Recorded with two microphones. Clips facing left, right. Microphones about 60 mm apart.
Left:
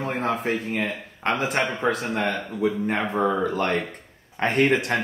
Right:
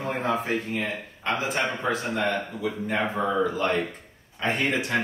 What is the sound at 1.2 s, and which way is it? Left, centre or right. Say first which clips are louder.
Speech: left 3 dB; left.